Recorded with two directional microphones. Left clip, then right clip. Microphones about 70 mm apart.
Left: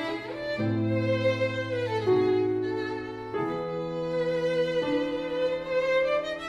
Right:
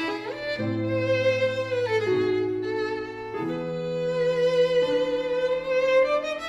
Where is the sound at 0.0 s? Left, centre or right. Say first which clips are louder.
Right 3 dB; left.